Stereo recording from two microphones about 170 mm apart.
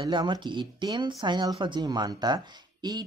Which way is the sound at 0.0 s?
25° right (ahead or behind).